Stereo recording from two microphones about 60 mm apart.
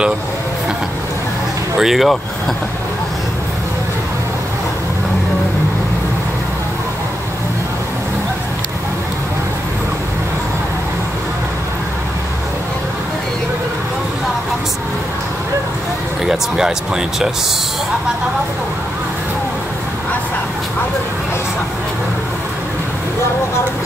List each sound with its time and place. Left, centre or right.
1.8 s speech: centre
16.2 s speech: centre